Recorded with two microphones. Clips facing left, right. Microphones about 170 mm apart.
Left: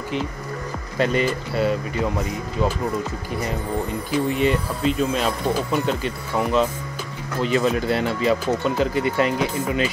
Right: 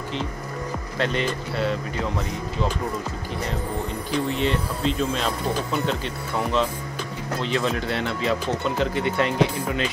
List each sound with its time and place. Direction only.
0.9 s speech: 5° left (ahead or behind)
4.1 s speech: 10° left (ahead or behind)